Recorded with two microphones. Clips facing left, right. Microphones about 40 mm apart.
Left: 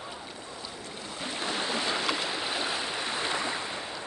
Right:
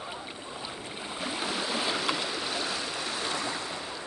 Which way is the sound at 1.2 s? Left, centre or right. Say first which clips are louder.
Right 1 dB; right.